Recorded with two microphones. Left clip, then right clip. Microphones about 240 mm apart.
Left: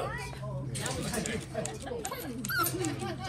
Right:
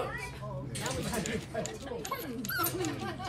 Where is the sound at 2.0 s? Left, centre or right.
Left.